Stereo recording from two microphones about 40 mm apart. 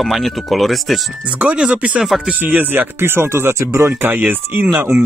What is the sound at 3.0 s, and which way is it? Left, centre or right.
Speech, right.